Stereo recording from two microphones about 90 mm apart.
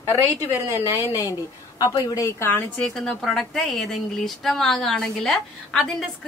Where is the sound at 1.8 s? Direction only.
45° left (ahead or behind).